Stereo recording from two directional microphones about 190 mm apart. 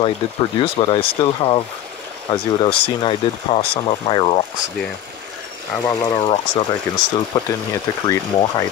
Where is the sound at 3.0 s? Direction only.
30° left (ahead or behind).